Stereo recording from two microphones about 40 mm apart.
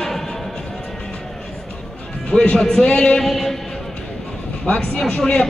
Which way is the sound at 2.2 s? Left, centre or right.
Left.